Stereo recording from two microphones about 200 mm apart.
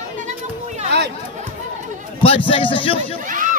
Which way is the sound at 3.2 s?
40° right (ahead or behind).